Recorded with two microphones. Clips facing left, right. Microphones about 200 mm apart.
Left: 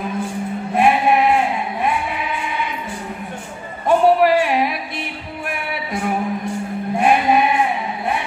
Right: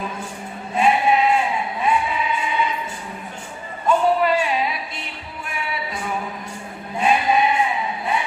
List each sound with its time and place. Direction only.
0.7 s sheep: 60° left (ahead or behind)
1.8 s music: 60° left (ahead or behind)
3.8 s music: 65° left (ahead or behind)
7.0 s sheep: 60° left (ahead or behind)